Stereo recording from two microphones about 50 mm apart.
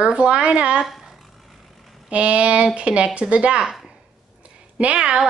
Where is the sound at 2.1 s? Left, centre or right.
Right.